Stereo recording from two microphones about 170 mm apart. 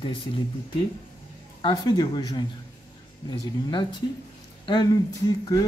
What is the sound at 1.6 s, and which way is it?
Speech, 25° left (ahead or behind).